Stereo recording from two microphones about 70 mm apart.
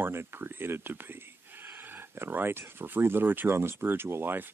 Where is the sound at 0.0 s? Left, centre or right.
Right.